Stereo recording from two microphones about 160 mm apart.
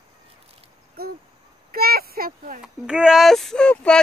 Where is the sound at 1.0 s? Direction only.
70° right (ahead or behind).